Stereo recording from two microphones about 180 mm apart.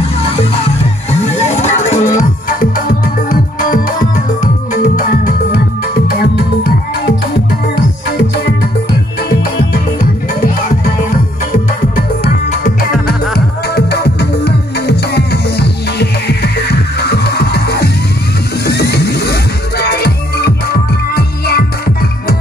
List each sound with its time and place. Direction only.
1.6 s music: 35° left (ahead or behind)
4.9 s music: 50° left (ahead or behind)
13.7 s music: 65° left (ahead or behind)